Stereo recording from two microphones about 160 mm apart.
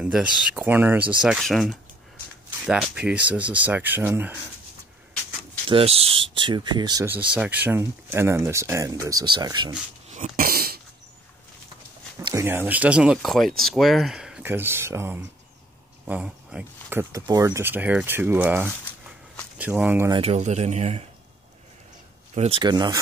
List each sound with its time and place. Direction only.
0.0 s speech: 5° right (ahead or behind)
1.2 s speech: centre (ahead or behind)
5.7 s speech: 35° right (ahead or behind)
7.1 s speech: 10° right (ahead or behind); by 9.8 s 25° right (ahead or behind)
10.1 s dog: 50° right (ahead or behind); by 10.8 s 70° right (ahead or behind)
12.4 s speech: 15° right (ahead or behind)
17.1 s speech: 20° right (ahead or behind)
20.1 s speech: 40° right (ahead or behind)
22.3 s speech: 45° right (ahead or behind)
22.6 s speech: 25° right (ahead or behind)